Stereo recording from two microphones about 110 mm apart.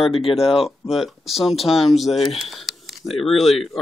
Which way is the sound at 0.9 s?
Centre (ahead or behind).